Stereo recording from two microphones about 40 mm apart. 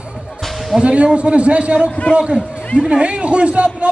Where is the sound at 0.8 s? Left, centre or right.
Right.